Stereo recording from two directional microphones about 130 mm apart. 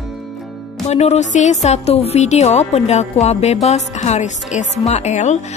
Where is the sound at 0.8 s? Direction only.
55° left (ahead or behind).